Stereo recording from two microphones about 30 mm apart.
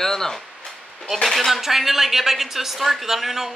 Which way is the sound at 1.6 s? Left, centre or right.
Centre.